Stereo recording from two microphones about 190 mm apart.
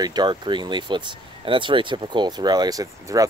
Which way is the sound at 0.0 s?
20° right (ahead or behind).